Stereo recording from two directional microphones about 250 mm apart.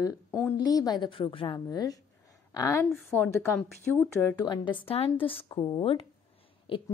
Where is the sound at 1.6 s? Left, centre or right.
Centre.